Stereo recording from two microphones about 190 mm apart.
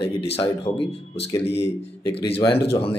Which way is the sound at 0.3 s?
30° left (ahead or behind).